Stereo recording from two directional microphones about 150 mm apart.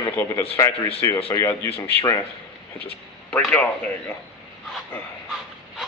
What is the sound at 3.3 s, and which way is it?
Speech, 10° left (ahead or behind).